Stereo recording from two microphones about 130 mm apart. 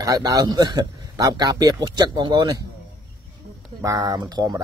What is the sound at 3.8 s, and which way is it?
Speech, 30° right (ahead or behind).